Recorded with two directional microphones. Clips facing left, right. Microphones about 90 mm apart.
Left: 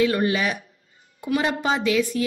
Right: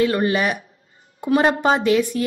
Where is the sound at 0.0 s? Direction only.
45° right (ahead or behind).